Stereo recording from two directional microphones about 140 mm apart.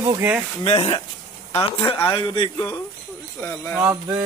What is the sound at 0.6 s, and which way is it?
Speech, 40° left (ahead or behind).